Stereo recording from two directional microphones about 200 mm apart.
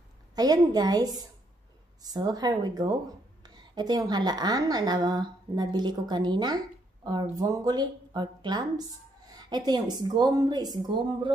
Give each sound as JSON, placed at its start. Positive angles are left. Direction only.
{"t": 0.4, "sound": "a woman's voice", "side_deg": -20}